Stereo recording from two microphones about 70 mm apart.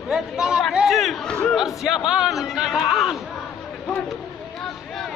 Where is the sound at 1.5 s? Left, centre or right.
Centre.